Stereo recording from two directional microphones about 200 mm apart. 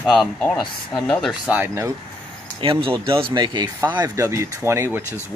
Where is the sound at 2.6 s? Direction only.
25° right (ahead or behind).